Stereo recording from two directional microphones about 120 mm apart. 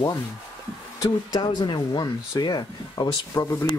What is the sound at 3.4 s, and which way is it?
Speech, 20° left (ahead or behind).